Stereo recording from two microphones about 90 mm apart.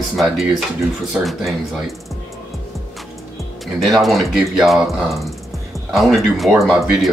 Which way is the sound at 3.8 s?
Centre (ahead or behind).